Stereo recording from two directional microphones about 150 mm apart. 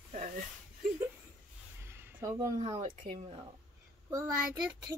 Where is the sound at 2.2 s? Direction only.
25° right (ahead or behind).